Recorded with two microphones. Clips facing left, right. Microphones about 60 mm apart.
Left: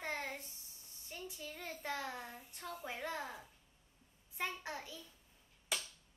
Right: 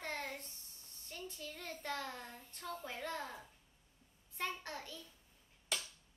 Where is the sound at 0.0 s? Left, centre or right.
Centre.